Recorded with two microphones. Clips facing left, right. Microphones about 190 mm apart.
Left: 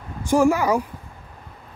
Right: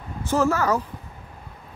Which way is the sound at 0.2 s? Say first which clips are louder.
Left 4 dB; 15° left (ahead or behind).